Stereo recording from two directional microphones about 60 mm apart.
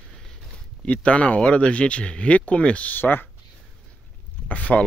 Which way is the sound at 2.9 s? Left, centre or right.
Left.